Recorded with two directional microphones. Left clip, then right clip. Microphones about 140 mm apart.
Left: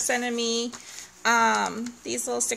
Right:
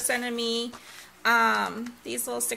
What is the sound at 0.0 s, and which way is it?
Speech, 25° left (ahead or behind).